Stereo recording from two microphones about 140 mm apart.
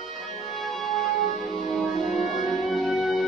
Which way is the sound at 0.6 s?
Centre (ahead or behind).